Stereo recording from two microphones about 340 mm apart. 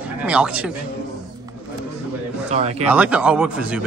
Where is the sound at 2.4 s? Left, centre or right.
Centre.